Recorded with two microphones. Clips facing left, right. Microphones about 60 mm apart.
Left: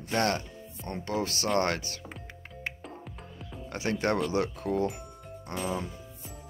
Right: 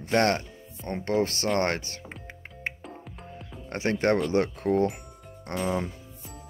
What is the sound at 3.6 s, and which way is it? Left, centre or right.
Speech, right.